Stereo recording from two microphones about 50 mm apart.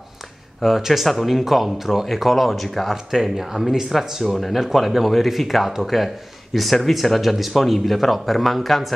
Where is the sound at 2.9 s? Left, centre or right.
Centre.